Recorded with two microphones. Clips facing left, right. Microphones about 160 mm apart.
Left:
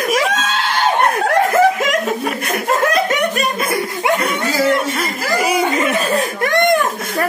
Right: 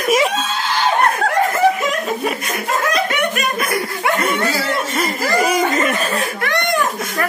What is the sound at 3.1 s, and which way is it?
Laughter, 30° left (ahead or behind).